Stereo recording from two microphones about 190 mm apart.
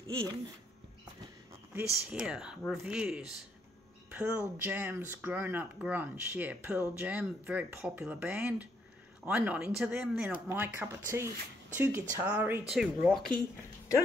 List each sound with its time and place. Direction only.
0.0 s speech: 20° right (ahead or behind)
2.0 s speech: 5° right (ahead or behind)